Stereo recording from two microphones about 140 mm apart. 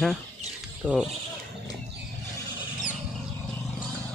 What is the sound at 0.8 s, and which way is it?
Speech, 10° right (ahead or behind).